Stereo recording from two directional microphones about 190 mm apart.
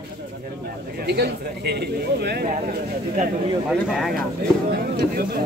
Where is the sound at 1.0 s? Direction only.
60° right (ahead or behind).